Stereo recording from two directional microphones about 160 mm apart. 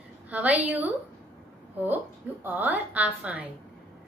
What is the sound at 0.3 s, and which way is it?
Speech, 10° right (ahead or behind).